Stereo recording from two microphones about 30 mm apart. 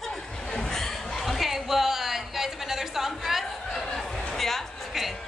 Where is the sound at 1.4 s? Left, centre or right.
Centre.